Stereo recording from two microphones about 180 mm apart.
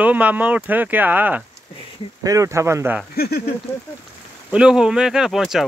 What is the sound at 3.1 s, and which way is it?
Speech, 60° left (ahead or behind).